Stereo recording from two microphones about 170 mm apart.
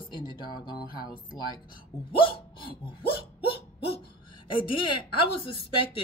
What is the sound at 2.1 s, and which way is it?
Hiccup, 30° left (ahead or behind).